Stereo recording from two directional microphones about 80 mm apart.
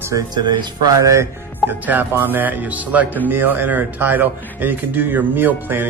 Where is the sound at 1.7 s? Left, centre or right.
Right.